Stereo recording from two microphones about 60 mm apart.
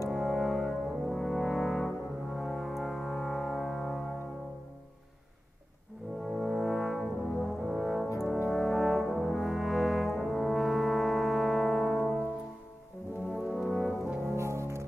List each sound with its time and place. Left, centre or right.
0.1 s brass instrument: centre
6.2 s french horn: centre
7.3 s music: centre
8.5 s brass instrument: centre
13.3 s french horn: centre
14.3 s brass instrument: right